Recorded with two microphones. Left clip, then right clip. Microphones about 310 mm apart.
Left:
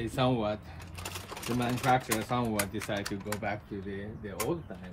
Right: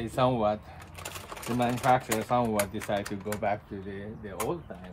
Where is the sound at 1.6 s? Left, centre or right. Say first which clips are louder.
Right 3 dB; centre.